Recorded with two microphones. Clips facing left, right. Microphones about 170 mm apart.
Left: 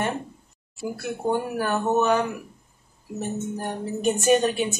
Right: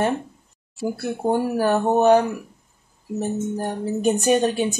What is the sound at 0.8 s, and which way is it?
A woman's voice, 35° right (ahead or behind).